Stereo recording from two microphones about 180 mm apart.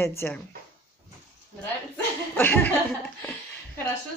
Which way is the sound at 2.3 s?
10° left (ahead or behind).